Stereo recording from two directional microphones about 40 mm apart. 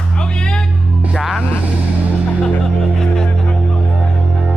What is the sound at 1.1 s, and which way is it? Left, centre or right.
Music, centre.